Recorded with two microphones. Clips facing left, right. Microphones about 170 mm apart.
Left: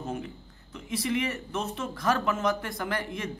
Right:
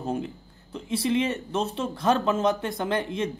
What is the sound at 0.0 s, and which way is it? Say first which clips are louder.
Speech: right 5 dB; 30° right (ahead or behind).